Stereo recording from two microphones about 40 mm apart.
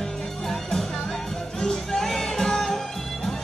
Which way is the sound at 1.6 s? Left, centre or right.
Centre.